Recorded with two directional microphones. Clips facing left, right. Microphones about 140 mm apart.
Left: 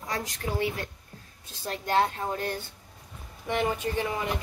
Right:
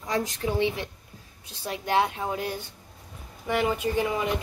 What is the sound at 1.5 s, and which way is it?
A woman's voice, 10° right (ahead or behind).